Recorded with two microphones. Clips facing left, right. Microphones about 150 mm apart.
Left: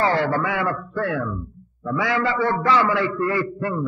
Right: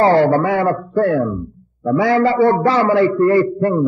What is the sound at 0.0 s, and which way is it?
A man's voice, 40° right (ahead or behind).